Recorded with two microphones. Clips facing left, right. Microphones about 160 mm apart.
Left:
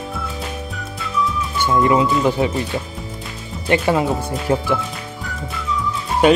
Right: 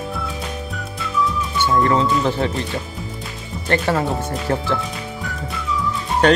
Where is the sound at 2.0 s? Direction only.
10° left (ahead or behind).